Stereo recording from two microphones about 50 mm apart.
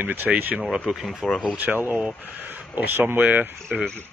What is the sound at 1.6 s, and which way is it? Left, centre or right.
Speech, right.